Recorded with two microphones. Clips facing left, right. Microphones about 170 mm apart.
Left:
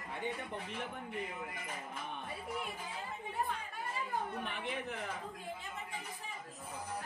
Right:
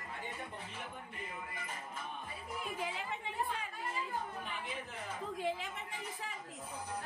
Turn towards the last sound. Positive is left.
turn(degrees=-90)